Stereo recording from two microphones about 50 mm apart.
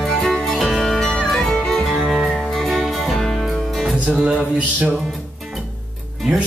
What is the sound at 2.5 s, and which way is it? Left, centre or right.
Music, centre.